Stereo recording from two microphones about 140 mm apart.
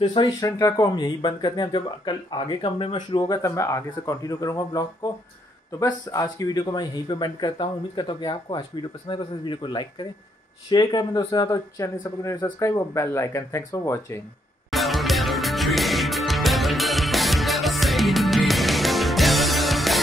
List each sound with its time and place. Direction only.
0.0 s speech: 30° left (ahead or behind)
14.7 s music: centre (ahead or behind)